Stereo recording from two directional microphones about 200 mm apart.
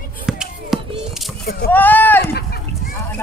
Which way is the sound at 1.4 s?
50° left (ahead or behind).